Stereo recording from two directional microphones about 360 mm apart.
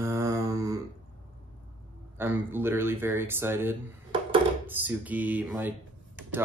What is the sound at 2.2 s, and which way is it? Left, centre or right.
Speech, centre.